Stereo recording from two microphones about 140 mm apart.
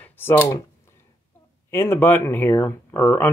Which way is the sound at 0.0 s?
15° left (ahead or behind).